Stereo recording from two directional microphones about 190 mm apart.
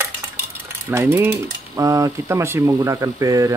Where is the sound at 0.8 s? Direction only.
10° right (ahead or behind).